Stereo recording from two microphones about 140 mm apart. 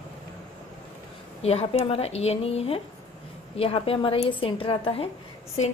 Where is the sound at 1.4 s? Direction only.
45° left (ahead or behind).